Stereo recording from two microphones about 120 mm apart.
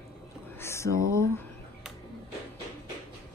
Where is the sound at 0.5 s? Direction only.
20° left (ahead or behind).